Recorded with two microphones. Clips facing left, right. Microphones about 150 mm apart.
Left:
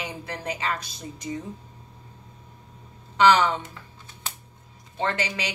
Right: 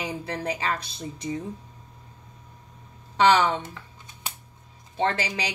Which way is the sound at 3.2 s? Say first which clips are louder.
Left 1 dB; 30° right (ahead or behind).